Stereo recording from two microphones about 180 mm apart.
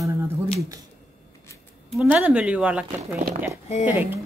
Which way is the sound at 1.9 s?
5° right (ahead or behind).